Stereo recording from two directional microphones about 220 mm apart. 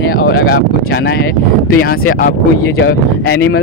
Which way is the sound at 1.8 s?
40° left (ahead or behind).